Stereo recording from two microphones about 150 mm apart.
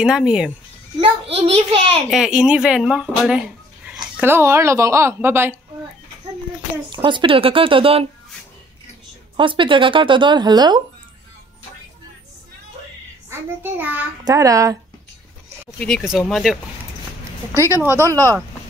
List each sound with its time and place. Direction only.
0.0 s speech: 5° right (ahead or behind)
1.0 s speech: 40° right (ahead or behind)
2.0 s speech: 5° right (ahead or behind)
4.2 s a woman's voice: 15° right (ahead or behind)
6.9 s speech: 30° right (ahead or behind)
9.4 s speech: 35° right (ahead or behind)
13.3 s a woman's voice: 15° right (ahead or behind)
14.2 s speech: 20° right (ahead or behind)
15.8 s speech: centre (ahead or behind)
17.6 s speech: 20° right (ahead or behind)